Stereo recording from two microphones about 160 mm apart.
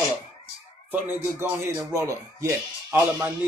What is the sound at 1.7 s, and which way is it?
Speech, 20° right (ahead or behind).